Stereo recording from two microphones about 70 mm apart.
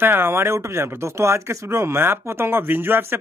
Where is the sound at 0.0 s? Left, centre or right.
Right.